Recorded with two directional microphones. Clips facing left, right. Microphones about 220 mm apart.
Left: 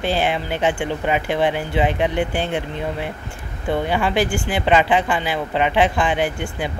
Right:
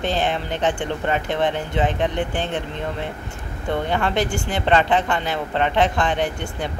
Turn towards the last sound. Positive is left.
turn(degrees=5)  # may be behind; listen again after turning